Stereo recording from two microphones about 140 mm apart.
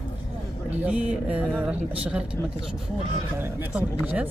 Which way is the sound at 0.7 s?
10° right (ahead or behind).